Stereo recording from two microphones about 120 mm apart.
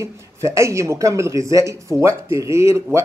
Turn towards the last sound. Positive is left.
turn(degrees=-20)  # may be behind; listen again after turning